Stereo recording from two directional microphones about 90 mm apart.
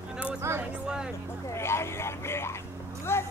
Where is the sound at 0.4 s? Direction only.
30° right (ahead or behind).